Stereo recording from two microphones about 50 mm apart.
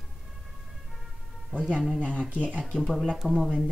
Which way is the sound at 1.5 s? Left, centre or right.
Left.